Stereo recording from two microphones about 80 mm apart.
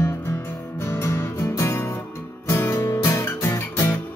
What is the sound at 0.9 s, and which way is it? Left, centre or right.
Music, left.